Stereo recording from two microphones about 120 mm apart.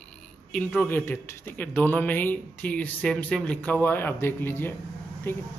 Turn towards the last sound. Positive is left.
turn(degrees=20)  # may be behind; listen again after turning